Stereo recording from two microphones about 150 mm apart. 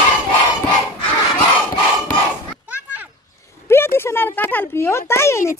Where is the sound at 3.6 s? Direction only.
15° left (ahead or behind).